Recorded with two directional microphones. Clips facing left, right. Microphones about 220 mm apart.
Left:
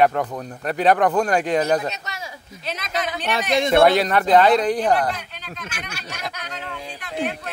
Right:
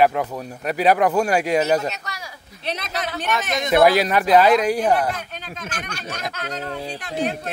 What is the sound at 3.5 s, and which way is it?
Speech, 30° left (ahead or behind).